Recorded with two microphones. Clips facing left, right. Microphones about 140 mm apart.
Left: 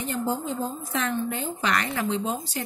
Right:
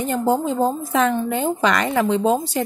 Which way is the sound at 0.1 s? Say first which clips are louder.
Right 8 dB; 90° right.